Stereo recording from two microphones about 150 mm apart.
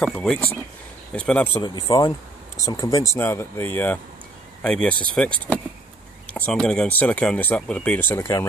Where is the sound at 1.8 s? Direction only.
25° left (ahead or behind); by 5.3 s 5° left (ahead or behind).